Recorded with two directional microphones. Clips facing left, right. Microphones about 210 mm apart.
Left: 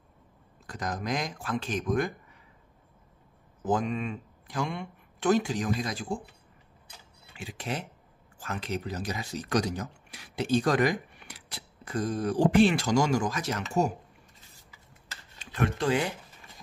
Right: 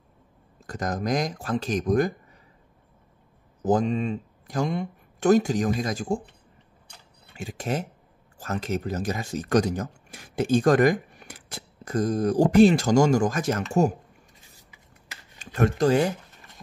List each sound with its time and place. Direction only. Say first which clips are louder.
0.7 s speech: right 5 dB; 45° right (ahead or behind)
3.6 s speech: right 6 dB; 35° right (ahead or behind)
7.3 s speech: right 6 dB; 45° right (ahead or behind)
15.3 s speech: right 6 dB; 45° right (ahead or behind)